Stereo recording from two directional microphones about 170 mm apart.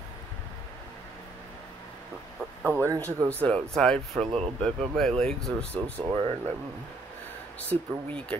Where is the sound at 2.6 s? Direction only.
15° right (ahead or behind).